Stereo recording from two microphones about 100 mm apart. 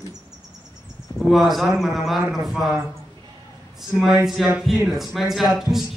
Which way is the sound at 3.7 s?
5° right (ahead or behind).